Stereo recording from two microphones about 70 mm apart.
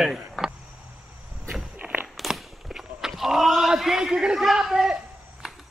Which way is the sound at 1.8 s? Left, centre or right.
Centre.